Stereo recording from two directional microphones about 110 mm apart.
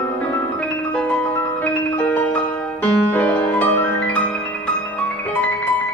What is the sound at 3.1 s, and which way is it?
Music, 15° left (ahead or behind).